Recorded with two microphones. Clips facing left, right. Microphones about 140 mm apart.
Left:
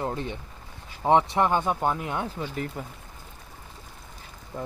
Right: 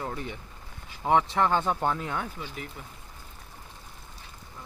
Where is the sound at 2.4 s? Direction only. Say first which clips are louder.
Left 7 dB; 45° left (ahead or behind).